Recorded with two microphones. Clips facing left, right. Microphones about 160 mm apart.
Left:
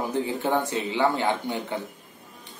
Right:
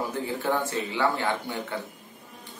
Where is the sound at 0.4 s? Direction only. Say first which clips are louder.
Left 2 dB; 20° left (ahead or behind).